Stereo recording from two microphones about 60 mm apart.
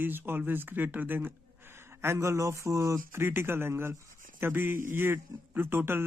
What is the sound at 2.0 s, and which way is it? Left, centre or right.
Speech, right.